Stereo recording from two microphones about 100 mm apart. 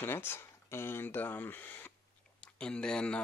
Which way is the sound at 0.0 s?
20° left (ahead or behind).